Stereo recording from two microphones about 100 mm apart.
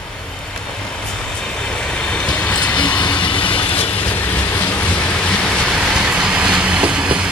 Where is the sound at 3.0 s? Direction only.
50° left (ahead or behind).